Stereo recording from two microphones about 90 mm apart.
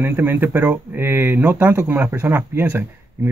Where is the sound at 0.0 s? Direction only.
20° right (ahead or behind).